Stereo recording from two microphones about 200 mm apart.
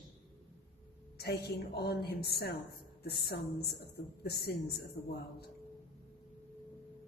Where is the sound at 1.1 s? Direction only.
55° left (ahead or behind).